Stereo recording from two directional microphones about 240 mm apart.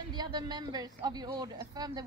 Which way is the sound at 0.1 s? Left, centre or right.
Centre.